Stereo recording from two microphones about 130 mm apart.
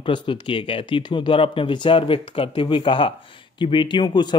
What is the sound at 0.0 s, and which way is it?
Speech, 40° left (ahead or behind).